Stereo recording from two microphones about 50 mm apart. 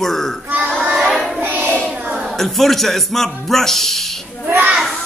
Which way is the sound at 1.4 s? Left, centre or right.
Right.